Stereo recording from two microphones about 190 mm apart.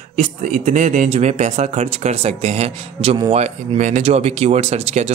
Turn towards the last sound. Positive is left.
turn(degrees=-35)  # may be behind; listen again after turning